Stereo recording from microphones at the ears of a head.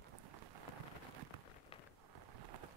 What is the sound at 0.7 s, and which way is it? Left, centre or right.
Rain, right.